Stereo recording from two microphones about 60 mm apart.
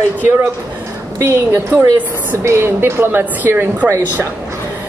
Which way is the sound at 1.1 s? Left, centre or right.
Right.